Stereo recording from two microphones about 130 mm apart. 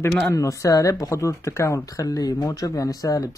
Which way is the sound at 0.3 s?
25° left (ahead or behind).